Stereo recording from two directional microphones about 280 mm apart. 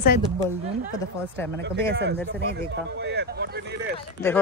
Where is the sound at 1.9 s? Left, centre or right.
Right.